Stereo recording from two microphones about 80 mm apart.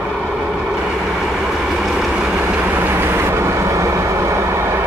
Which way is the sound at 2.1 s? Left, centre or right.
Centre.